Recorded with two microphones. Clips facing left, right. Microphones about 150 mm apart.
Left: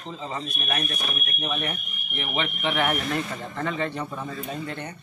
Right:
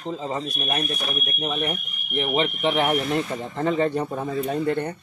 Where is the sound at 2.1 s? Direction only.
30° right (ahead or behind).